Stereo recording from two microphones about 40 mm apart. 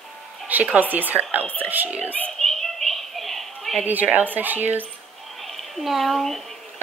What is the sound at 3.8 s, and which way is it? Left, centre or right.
A woman's voice, right.